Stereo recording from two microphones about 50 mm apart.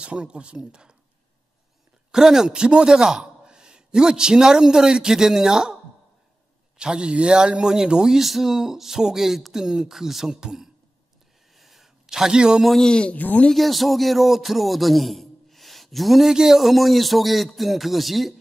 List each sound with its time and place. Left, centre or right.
0.0 s speech: right
2.1 s a man's voice: centre
6.8 s a man's voice: centre
11.5 s a sound: centre
12.8 s a man's voice: centre
13.1 s speech: left
13.5 s speech: centre